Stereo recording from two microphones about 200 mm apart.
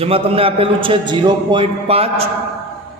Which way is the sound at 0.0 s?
30° right (ahead or behind).